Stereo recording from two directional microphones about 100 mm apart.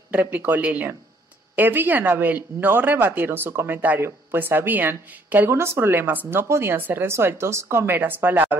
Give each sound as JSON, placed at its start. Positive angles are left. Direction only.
{"t": 0.1, "sound": "speech", "side_deg": -15}